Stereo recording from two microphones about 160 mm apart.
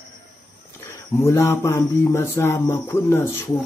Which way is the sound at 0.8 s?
15° left (ahead or behind).